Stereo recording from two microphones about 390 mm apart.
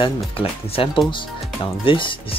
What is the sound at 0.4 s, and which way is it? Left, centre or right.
Speech, centre.